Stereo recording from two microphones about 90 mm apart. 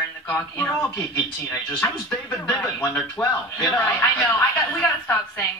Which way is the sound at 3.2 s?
35° left (ahead or behind).